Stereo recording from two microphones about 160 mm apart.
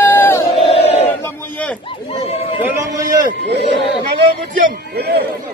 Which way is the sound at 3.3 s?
90° right.